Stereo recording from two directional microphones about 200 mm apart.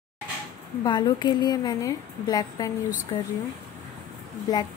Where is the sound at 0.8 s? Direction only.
20° left (ahead or behind).